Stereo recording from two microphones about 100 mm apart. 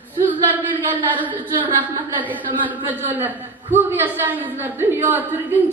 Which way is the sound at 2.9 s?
20° right (ahead or behind).